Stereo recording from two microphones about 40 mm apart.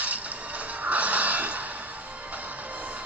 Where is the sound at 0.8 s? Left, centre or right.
Right.